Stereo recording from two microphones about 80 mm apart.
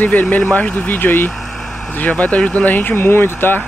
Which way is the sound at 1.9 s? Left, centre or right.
Centre.